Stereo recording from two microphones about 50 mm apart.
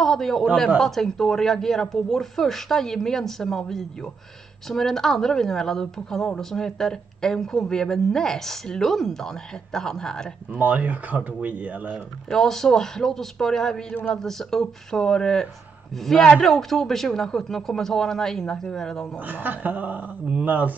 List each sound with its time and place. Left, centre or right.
0.0 s a man's voice: centre
10.6 s speech: right
12.3 s speech: centre
19.2 s speech: right